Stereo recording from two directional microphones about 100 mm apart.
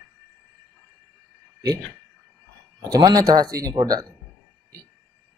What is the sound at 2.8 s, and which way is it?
Speech, 40° right (ahead or behind).